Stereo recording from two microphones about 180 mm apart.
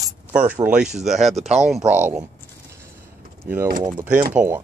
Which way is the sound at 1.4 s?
35° right (ahead or behind).